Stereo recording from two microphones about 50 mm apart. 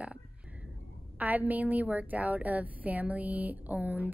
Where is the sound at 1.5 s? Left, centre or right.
Right.